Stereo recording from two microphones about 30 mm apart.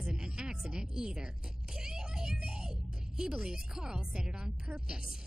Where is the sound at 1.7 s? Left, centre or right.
Right.